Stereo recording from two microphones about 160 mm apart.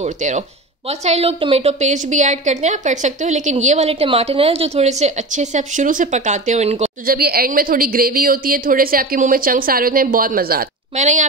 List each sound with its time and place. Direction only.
0.0 s a woman's voice: 45° right (ahead or behind)
7.1 s a woman's voice: 70° right (ahead or behind)
11.0 s a woman's voice: 45° right (ahead or behind)